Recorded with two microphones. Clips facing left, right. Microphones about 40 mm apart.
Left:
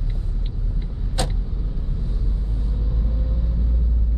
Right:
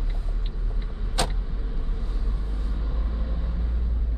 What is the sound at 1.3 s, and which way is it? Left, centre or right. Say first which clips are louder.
Vehicle: left 4 dB; right.